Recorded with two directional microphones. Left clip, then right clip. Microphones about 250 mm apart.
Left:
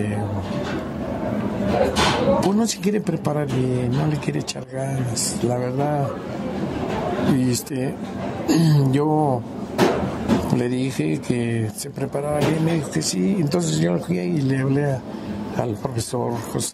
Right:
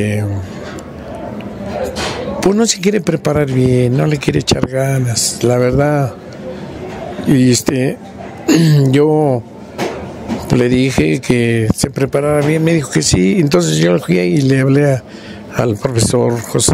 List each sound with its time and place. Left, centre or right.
2.4 s speech: right
7.3 s speech: right
10.5 s speech: right